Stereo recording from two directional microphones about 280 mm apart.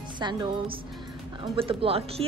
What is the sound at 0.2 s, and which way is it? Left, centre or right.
A woman's voice, centre.